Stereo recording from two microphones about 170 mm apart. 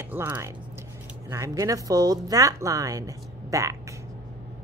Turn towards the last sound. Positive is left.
turn(degrees=-20)  # may be behind; listen again after turning